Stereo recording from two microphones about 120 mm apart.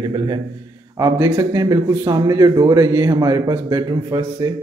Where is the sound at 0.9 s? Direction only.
25° right (ahead or behind).